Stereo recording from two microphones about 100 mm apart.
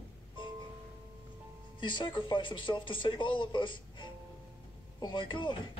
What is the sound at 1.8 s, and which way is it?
Speech, 55° left (ahead or behind).